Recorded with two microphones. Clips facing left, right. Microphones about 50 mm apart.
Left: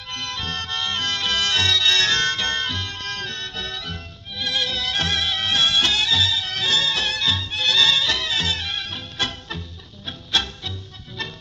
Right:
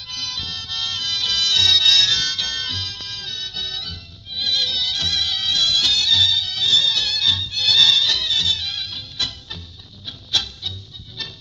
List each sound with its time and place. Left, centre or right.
0.1 s music: left
3.0 s music: left